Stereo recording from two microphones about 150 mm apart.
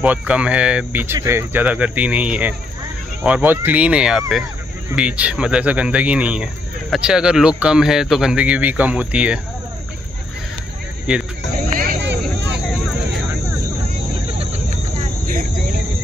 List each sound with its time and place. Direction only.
0.0 s speech: 10° right (ahead or behind)
11.5 s music: 70° right (ahead or behind)
14.4 s vehicle: 45° right (ahead or behind)
15.2 s cricket: 70° right (ahead or behind)